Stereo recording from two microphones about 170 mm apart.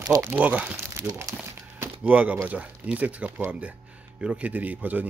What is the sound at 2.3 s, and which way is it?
Speech, 10° right (ahead or behind).